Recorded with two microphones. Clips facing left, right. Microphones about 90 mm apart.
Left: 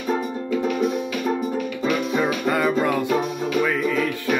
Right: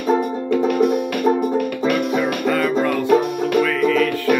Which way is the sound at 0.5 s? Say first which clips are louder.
Right 5 dB; 60° right (ahead or behind).